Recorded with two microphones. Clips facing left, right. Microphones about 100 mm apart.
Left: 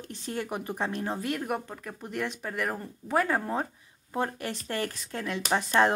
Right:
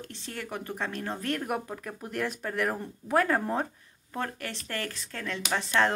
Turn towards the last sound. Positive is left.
turn(degrees=20)  # may be behind; listen again after turning